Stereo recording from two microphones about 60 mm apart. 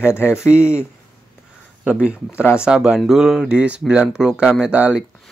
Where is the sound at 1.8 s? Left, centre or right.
Centre.